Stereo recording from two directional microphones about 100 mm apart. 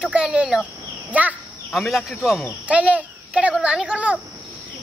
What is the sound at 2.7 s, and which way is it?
A child's voice, 15° right (ahead or behind).